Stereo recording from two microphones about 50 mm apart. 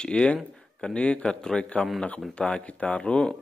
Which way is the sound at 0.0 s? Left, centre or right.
Left.